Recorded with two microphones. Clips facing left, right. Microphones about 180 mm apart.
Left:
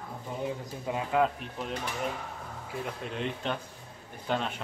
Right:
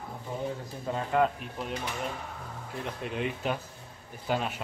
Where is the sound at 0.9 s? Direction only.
5° left (ahead or behind).